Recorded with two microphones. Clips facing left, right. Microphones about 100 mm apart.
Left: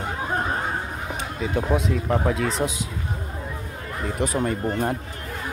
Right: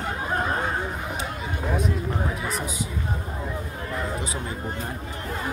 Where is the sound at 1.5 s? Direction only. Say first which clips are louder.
Left 4 dB; 85° left.